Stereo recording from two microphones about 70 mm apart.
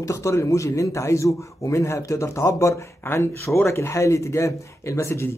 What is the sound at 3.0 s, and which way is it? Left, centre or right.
Speech, left.